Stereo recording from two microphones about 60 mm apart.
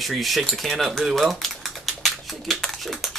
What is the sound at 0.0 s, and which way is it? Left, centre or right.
Speech, centre.